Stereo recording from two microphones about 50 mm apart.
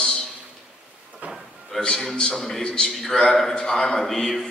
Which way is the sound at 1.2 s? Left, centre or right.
Right.